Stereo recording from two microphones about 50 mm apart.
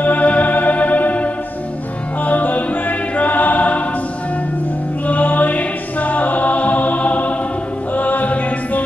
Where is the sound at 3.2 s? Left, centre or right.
Left.